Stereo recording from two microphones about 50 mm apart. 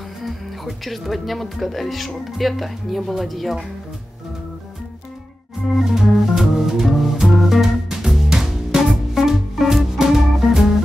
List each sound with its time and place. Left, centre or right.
0.2 s speech: centre
5.9 s music: centre